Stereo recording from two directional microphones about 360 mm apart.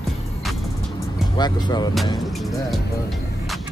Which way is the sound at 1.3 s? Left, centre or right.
Centre.